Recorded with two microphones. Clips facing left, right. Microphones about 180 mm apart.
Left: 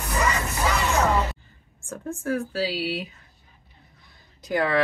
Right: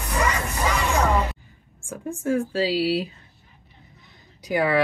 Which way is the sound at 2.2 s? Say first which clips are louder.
Right 4 dB; 25° right (ahead or behind).